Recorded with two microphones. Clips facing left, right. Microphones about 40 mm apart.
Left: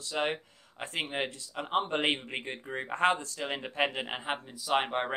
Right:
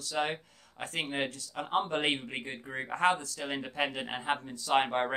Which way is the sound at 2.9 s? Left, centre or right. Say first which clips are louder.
Left 1 dB; left.